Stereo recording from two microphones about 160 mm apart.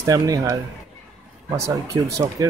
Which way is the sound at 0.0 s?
20° right (ahead or behind).